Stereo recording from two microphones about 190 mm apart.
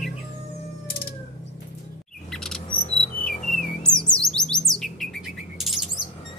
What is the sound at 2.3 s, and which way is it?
Chirp, centre (ahead or behind).